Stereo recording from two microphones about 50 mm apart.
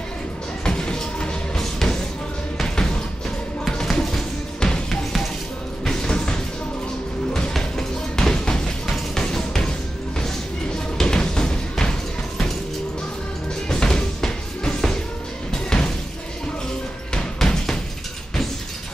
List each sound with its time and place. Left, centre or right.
0.7 s music: centre
5.9 s music: centre
7.5 s music: centre
11.0 s music: centre
13.7 s music: centre
17.1 s music: centre